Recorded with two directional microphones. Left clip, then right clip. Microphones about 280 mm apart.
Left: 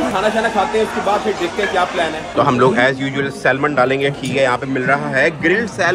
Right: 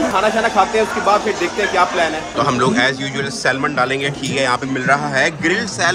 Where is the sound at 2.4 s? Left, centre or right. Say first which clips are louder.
Left 3 dB; centre.